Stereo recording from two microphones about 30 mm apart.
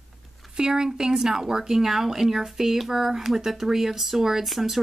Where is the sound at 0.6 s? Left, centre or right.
Right.